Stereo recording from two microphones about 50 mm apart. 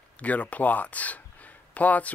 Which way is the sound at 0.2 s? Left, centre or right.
Left.